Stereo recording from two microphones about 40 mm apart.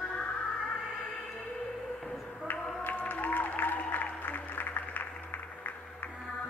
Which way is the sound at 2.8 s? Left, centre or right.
Left.